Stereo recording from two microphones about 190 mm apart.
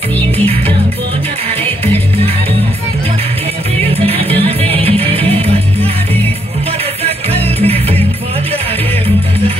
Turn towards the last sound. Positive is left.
turn(degrees=-30)  # may be behind; listen again after turning